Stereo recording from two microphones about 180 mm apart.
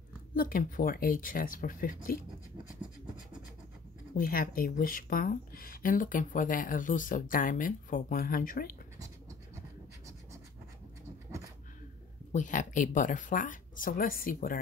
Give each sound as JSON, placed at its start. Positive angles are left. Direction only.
{"t": 0.3, "sound": "speech", "side_deg": 50}
{"t": 4.2, "sound": "speech", "side_deg": 55}
{"t": 12.3, "sound": "speech", "side_deg": 45}